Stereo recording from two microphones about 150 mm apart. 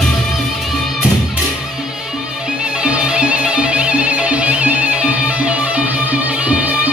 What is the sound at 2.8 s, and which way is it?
Music, 5° right (ahead or behind).